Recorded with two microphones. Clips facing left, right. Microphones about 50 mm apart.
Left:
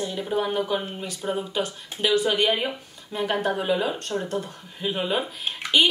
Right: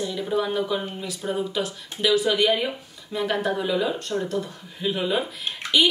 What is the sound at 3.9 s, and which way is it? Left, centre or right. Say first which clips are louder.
Speech: right 1 dB; left.